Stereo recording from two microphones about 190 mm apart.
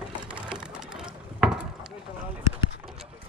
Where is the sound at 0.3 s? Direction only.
5° right (ahead or behind).